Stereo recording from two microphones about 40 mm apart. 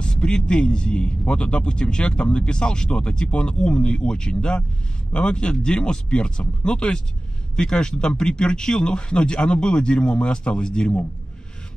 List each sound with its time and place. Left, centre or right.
0.0 s a man's voice: centre